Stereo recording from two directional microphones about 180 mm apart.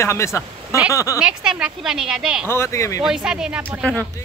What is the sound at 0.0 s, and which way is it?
Speech, 15° left (ahead or behind).